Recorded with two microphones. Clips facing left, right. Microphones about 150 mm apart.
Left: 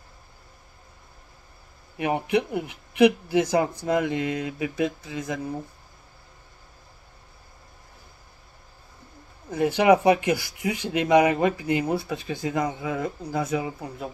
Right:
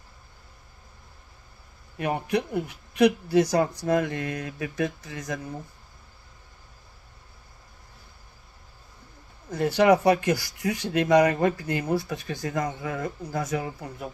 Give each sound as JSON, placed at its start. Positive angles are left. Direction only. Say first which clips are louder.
{"t": 2.0, "sound": "speech", "louder": "left 3 dB", "side_deg": 15}
{"t": 9.5, "sound": "speech", "louder": "left 1 dB", "side_deg": 10}
{"t": 11.9, "sound": "speech", "louder": "even", "side_deg": 25}